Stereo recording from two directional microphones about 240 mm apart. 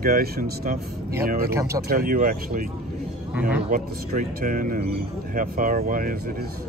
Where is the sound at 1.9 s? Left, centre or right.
Right.